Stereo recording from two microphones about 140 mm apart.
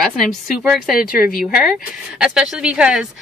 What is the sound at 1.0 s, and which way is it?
Speech, 85° left.